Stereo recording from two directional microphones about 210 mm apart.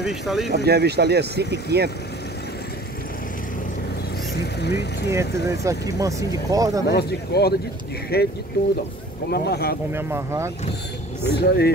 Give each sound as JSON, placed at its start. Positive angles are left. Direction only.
{"t": 0.0, "sound": "speech", "side_deg": 0}
{"t": 0.7, "sound": "speech", "side_deg": -50}
{"t": 4.3, "sound": "vehicle", "side_deg": 50}
{"t": 5.2, "sound": "speech", "side_deg": 50}
{"t": 5.5, "sound": "speech", "side_deg": -15}
{"t": 6.9, "sound": "speech", "side_deg": 50}
{"t": 9.9, "sound": "speech", "side_deg": -10}
{"t": 11.2, "sound": "speech", "side_deg": 50}